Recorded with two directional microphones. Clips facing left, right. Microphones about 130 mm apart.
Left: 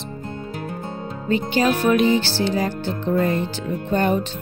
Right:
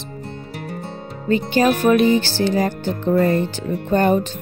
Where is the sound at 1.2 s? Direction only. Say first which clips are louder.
Right 3 dB; 45° right (ahead or behind).